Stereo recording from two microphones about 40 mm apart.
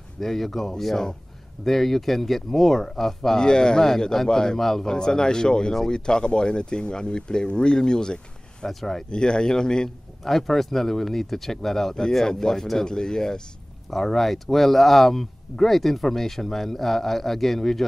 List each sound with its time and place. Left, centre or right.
0.2 s speech: centre
8.6 s speech: centre
9.1 s speech: left
10.2 s speech: centre
13.8 s speech: centre